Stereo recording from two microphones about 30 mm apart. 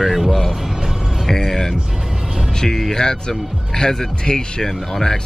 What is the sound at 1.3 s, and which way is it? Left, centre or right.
Speech, centre.